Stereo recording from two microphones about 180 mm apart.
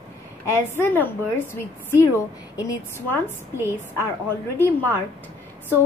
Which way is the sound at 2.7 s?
10° left (ahead or behind).